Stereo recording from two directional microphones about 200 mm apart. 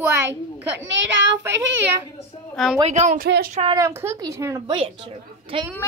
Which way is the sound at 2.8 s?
35° right (ahead or behind).